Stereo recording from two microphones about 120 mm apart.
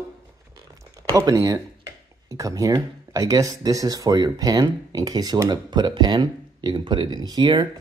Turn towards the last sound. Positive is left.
turn(degrees=-35)  # may be behind; listen again after turning